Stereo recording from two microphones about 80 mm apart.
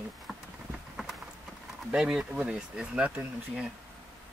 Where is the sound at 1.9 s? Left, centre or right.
Centre.